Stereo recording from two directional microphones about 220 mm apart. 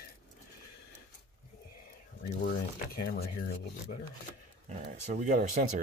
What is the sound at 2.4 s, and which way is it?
Speech, 45° left (ahead or behind).